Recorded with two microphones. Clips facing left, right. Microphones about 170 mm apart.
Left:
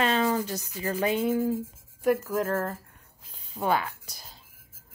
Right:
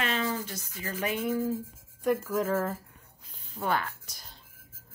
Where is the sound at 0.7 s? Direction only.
35° left (ahead or behind).